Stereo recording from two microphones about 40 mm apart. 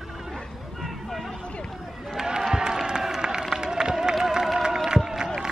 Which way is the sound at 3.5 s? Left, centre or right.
Centre.